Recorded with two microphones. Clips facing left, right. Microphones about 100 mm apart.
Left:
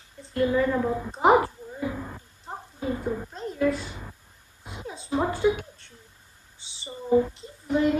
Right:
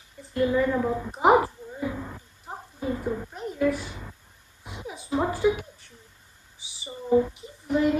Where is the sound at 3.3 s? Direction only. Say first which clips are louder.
Even; 10° right (ahead or behind).